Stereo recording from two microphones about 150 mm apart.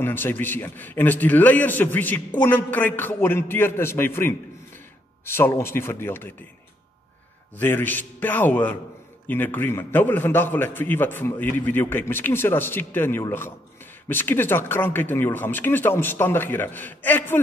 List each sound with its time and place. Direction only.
0.0 s a man's voice: 15° left (ahead or behind)
7.5 s a man's voice: 15° left (ahead or behind)